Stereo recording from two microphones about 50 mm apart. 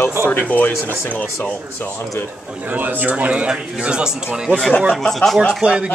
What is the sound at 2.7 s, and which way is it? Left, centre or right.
A man's voice, right.